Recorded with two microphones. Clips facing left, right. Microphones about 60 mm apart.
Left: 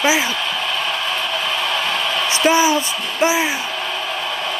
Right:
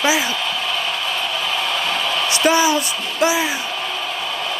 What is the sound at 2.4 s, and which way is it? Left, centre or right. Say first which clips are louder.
Speech: left 1 dB; left.